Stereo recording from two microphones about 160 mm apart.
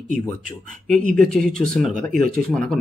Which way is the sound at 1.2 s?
5° left (ahead or behind).